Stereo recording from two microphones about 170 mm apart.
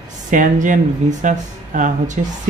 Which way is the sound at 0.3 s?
50° right (ahead or behind).